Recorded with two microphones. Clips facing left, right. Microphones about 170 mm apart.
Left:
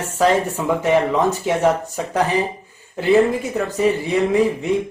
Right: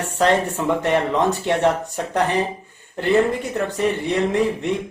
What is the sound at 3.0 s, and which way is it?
Speech, 5° left (ahead or behind).